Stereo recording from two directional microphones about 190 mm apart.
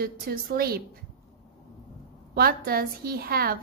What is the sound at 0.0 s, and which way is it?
Speech, 50° right (ahead or behind).